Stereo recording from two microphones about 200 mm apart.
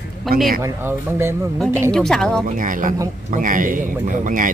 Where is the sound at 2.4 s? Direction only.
40° right (ahead or behind).